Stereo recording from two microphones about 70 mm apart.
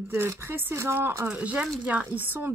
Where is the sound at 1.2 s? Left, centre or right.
Centre; by 2.5 s right.